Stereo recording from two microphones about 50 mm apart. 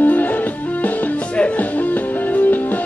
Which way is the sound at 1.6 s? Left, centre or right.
Left.